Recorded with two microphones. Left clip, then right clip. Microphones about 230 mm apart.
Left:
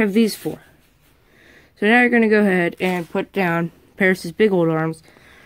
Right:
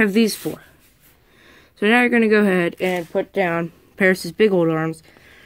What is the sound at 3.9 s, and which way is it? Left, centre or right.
Speech, centre.